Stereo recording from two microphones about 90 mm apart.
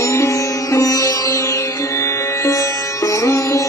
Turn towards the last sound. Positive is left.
turn(degrees=35)  # may be behind; listen again after turning